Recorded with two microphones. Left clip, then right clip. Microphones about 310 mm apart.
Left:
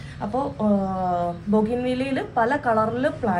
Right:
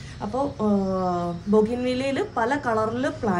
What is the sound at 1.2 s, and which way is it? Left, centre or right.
A woman's voice, right.